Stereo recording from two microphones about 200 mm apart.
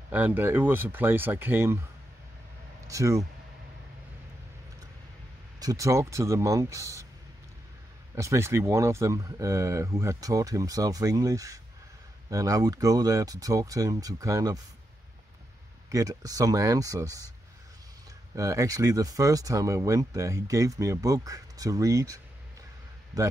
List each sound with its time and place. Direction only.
0.1 s speech: 10° right (ahead or behind)
2.9 s speech: 15° right (ahead or behind)
5.6 s speech: 15° right (ahead or behind)
8.1 s speech: 15° right (ahead or behind)
15.9 s speech: 15° right (ahead or behind)
18.3 s speech: 15° right (ahead or behind)